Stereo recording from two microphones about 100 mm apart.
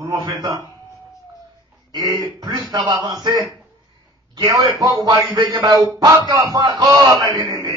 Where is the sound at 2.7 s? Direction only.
40° right (ahead or behind).